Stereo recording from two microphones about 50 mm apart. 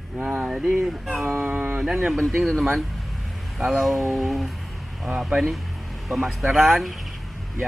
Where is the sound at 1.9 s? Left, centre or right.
Centre.